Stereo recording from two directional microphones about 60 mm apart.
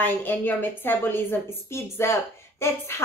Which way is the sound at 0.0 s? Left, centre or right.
Left.